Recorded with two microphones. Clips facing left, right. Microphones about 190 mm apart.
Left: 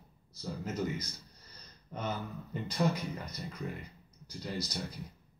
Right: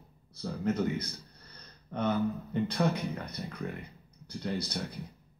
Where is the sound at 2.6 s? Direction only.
60° right (ahead or behind).